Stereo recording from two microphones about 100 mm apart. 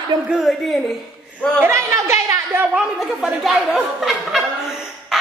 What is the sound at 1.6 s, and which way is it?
Speech, 25° right (ahead or behind).